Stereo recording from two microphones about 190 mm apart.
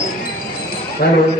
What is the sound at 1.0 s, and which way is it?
Speech, 55° left (ahead or behind).